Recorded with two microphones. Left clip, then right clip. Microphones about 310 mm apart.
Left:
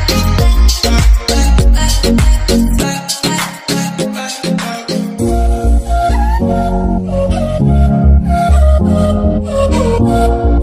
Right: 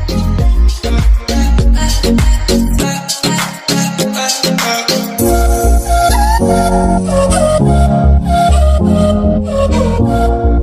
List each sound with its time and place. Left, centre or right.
0.8 s music: centre
4.5 s music: right
5.9 s music: right
7.1 s music: right; by 10.3 s centre